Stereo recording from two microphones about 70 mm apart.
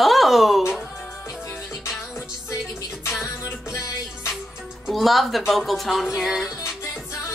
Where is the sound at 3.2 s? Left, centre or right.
Left.